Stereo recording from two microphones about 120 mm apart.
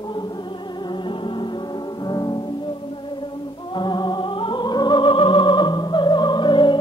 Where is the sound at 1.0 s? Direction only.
45° left (ahead or behind).